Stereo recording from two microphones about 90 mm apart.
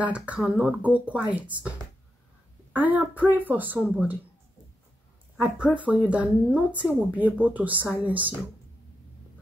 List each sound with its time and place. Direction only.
0.0 s speech: 15° right (ahead or behind)
2.7 s a woman's voice: 20° right (ahead or behind)
5.8 s speech: 15° right (ahead or behind)